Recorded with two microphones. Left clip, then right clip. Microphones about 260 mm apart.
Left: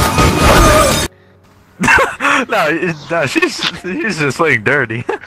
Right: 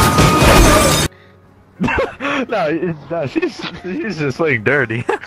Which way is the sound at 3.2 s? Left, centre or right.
Left.